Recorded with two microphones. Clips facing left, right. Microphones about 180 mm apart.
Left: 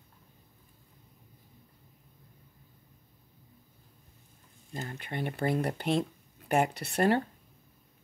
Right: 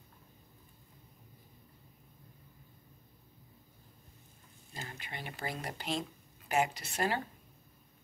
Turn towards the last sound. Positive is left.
turn(degrees=60)  # may be behind; listen again after turning